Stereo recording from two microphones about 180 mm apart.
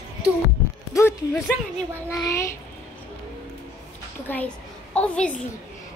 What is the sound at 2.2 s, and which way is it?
Speech, 15° left (ahead or behind).